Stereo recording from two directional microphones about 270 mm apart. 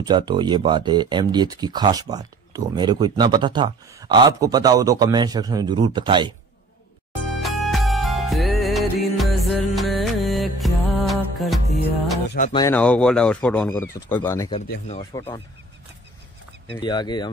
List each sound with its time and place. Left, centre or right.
0.0 s speech: centre
7.4 s music: centre
12.5 s speech: centre
16.8 s speech: centre